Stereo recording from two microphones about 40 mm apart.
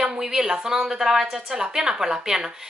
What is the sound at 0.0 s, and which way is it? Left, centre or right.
A woman's voice, centre.